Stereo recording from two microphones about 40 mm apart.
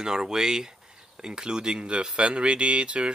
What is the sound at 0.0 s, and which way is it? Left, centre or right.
Speech, centre.